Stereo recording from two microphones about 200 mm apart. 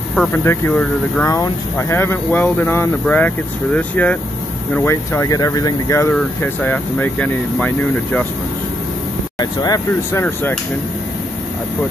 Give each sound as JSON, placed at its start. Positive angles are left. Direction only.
{"t": 0.1, "sound": "speech", "side_deg": 5}
{"t": 9.4, "sound": "speech", "side_deg": 20}
{"t": 10.2, "sound": "speech", "side_deg": 10}